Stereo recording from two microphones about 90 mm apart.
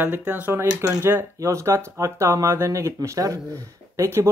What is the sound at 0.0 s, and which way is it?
Speech, 20° right (ahead or behind).